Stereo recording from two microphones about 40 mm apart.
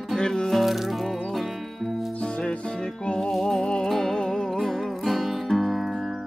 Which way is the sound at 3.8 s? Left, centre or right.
Centre.